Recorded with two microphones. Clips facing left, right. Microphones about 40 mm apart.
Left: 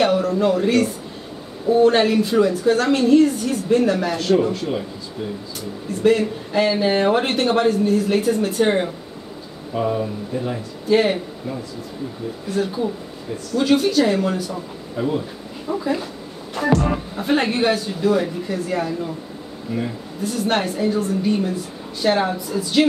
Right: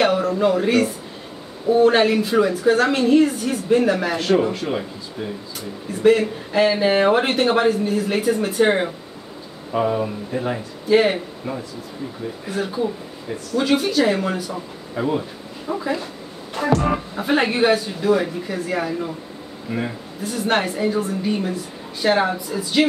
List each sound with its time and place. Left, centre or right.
0.0 s a woman's voice: centre
5.9 s a woman's voice: centre
9.8 s speech: right
10.9 s a woman's voice: centre
12.4 s a woman's voice: centre
16.5 s music: centre
16.8 s a woman's voice: centre